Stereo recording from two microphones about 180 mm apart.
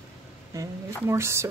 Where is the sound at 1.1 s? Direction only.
15° right (ahead or behind).